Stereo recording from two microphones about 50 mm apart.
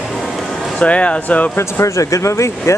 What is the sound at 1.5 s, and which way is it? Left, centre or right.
Speech, left.